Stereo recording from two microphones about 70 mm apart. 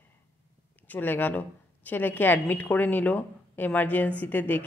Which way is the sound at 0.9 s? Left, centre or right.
Left.